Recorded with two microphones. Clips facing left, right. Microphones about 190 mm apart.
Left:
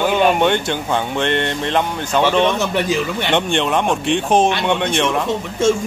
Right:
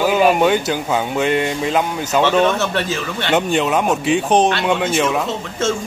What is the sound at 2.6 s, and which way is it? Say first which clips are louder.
Speech: left 2 dB; 15° left (ahead or behind).